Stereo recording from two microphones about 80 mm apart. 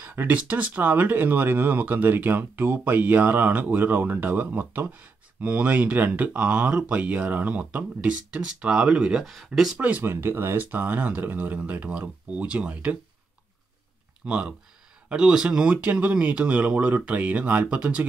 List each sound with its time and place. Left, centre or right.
0.0 s speech: right; by 9.8 s centre
9.8 s speech: centre
14.2 s speech: centre